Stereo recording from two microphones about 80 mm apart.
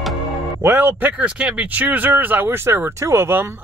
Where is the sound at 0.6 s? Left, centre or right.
Right.